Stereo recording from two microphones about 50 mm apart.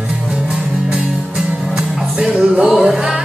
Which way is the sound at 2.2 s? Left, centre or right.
Centre.